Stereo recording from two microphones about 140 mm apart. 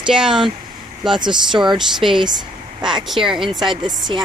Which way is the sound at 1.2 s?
35° right (ahead or behind).